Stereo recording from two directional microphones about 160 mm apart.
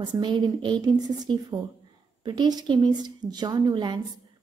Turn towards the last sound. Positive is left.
turn(degrees=-30)  # may be behind; listen again after turning